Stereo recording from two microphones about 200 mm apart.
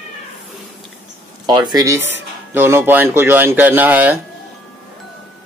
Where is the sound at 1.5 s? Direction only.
20° right (ahead or behind).